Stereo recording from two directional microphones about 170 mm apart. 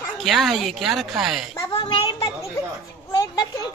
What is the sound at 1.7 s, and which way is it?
A child's voice, 25° left (ahead or behind).